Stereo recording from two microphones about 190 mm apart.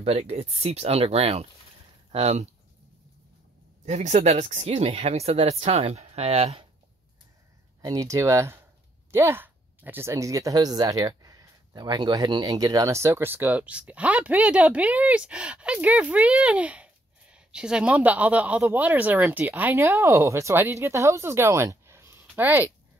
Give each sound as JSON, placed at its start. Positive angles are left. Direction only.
{"t": 0.0, "sound": "speech", "side_deg": -35}
{"t": 3.8, "sound": "speech", "side_deg": -35}
{"t": 7.8, "sound": "speech", "side_deg": -20}